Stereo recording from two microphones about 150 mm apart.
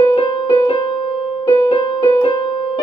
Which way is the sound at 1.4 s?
35° left (ahead or behind).